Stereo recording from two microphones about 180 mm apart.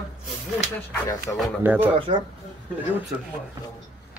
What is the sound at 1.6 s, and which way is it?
Speech, 10° right (ahead or behind).